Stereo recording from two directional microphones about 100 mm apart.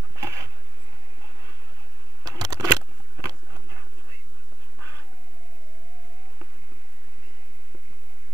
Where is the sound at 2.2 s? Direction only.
40° right (ahead or behind).